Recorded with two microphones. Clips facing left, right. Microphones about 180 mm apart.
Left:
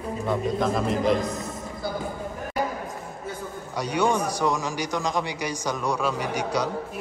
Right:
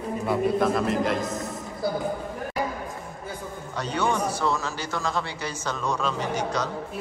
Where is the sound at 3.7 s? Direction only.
10° left (ahead or behind).